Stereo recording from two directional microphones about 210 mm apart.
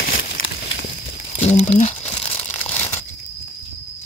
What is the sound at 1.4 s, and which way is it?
Speech, 30° left (ahead or behind).